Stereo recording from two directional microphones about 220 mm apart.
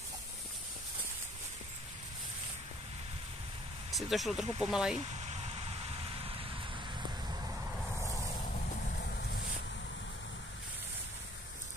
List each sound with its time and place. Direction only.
3.9 s speech: centre (ahead or behind)
5.1 s vehicle: 30° right (ahead or behind)
8.8 s boat: 45° left (ahead or behind)